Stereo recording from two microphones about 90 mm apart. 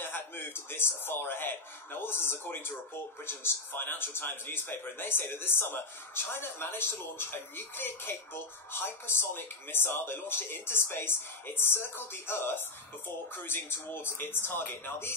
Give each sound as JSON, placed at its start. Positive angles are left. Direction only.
{"t": 0.0, "sound": "speech", "side_deg": 25}